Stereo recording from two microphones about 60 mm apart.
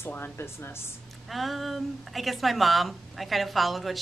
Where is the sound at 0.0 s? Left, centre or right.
Left.